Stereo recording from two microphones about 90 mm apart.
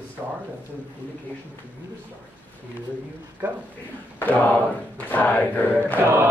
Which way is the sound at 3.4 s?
25° right (ahead or behind).